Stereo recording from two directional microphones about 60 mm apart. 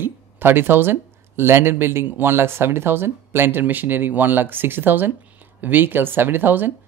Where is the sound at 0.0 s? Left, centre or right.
Right.